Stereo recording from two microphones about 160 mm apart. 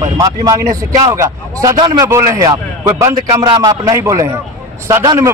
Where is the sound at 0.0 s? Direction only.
20° right (ahead or behind).